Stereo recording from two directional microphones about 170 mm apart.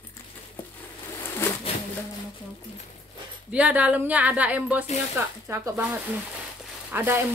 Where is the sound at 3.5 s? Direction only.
10° right (ahead or behind).